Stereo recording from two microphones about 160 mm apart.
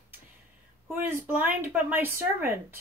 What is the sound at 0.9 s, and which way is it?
Speech, 10° right (ahead or behind).